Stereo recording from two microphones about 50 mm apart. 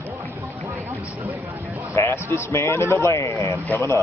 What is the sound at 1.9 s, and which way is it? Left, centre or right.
Speech, left.